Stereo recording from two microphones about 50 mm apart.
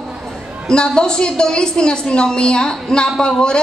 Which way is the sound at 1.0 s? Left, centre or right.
Centre.